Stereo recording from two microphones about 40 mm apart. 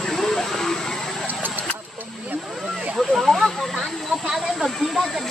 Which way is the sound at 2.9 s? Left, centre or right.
Centre.